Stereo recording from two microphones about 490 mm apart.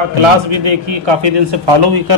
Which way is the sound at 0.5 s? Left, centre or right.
Right.